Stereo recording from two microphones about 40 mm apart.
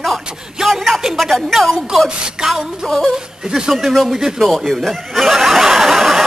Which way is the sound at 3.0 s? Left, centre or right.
Centre.